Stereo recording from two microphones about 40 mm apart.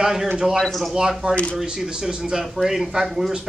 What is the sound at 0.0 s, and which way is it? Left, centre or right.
A man's voice, centre.